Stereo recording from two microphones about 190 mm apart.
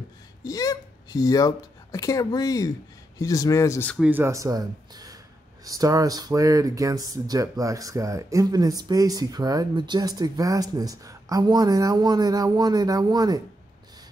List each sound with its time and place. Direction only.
0.4 s speech: 20° left (ahead or behind)
4.0 s speech: 10° right (ahead or behind)